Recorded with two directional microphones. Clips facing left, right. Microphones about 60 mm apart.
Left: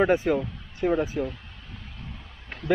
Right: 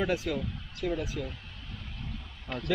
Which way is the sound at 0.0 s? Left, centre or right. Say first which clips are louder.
Left 8 dB; left.